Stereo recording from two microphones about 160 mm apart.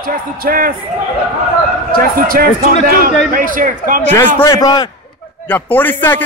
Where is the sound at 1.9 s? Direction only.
60° right (ahead or behind).